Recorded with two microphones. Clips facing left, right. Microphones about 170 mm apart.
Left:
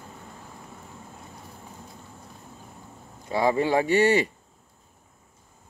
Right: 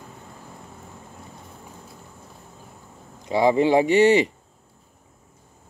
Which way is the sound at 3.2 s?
20° right (ahead or behind).